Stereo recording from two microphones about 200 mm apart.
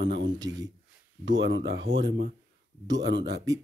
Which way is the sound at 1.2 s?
65° right (ahead or behind).